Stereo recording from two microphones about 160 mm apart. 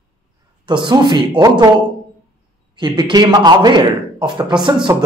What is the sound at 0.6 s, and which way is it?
Speech, 30° right (ahead or behind).